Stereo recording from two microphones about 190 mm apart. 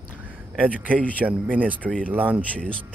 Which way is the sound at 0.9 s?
5° left (ahead or behind).